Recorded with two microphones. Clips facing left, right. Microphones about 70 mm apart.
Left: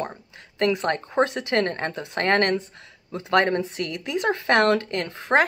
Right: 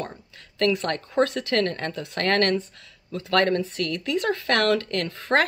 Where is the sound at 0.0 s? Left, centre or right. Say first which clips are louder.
Left 3 dB; left.